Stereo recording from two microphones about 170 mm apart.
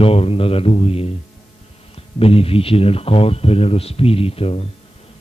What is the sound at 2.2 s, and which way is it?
A man's voice, 35° left (ahead or behind).